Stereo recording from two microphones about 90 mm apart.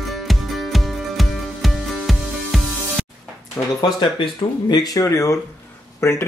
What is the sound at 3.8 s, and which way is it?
Speech, 65° left (ahead or behind).